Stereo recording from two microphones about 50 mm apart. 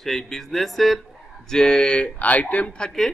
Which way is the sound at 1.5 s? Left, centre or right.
Centre.